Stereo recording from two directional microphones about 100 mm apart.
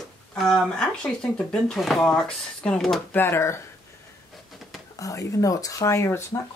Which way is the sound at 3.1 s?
20° left (ahead or behind).